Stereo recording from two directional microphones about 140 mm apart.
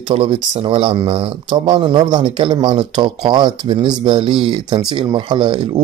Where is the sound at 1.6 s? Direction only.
30° right (ahead or behind).